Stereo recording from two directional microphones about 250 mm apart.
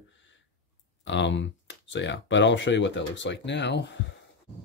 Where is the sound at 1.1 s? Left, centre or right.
Left.